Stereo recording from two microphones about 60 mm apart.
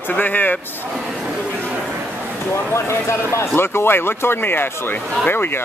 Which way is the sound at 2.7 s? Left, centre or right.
Left.